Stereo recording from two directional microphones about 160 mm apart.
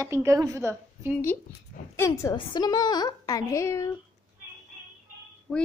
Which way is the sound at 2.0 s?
20° left (ahead or behind).